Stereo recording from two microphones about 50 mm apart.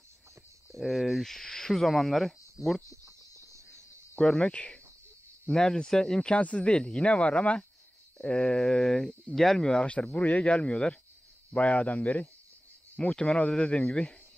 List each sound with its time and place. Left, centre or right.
0.7 s speech: centre
3.3 s cricket: right
4.2 s speech: centre
6.3 s speech: left
13.1 s speech: centre